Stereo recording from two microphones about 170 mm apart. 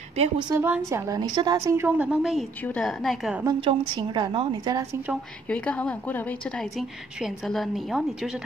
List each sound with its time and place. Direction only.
0.1 s a woman's voice: 35° right (ahead or behind)
0.5 s a woman's voice: 15° right (ahead or behind)
3.6 s a woman's voice: 30° right (ahead or behind)
5.5 s a woman's voice: 5° left (ahead or behind)